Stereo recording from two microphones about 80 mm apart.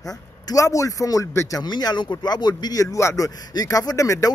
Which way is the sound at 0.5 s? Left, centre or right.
Left.